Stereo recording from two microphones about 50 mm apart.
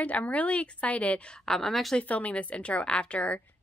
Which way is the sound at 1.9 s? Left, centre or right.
Left.